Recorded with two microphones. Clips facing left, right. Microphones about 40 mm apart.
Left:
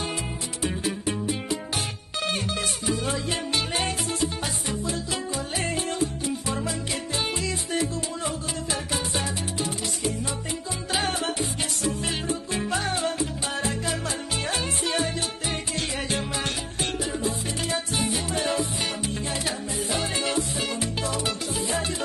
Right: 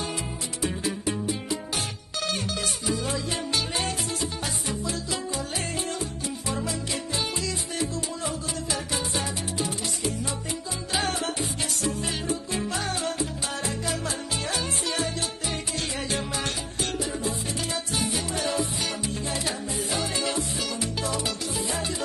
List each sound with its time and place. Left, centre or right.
1.0 s music: left
10.9 s music: left
16.8 s music: left
20.0 s music: left